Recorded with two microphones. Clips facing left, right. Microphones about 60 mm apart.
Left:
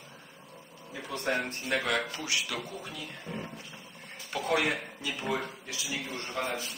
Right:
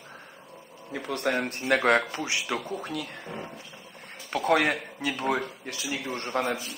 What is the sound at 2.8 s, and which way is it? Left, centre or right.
Speech, right.